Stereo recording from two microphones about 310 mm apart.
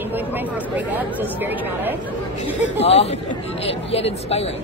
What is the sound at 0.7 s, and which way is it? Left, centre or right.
Speech, centre.